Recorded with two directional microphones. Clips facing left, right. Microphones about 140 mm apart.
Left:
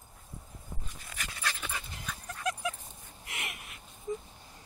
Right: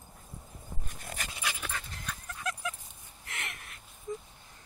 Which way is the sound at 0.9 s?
50° right (ahead or behind).